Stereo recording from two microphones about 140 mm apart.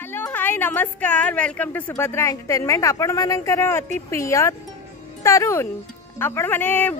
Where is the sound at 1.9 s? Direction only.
20° left (ahead or behind).